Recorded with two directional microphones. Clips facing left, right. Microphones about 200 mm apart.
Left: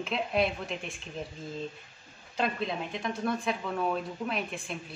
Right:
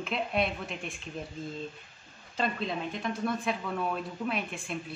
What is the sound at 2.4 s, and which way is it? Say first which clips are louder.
Speech: left 1 dB; centre (ahead or behind).